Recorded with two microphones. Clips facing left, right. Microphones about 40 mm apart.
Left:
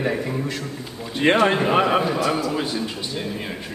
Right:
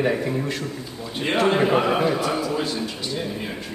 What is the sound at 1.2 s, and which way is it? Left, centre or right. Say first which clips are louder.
Speech: left 6 dB; left.